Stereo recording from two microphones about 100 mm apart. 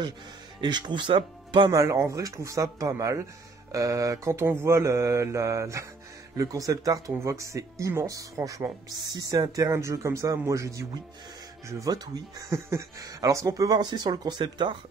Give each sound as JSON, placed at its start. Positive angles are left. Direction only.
{"t": 0.6, "sound": "speech", "side_deg": -45}
{"t": 1.7, "sound": "speech", "side_deg": -30}